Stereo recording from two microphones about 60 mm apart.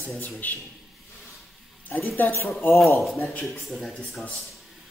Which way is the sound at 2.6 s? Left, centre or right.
Left.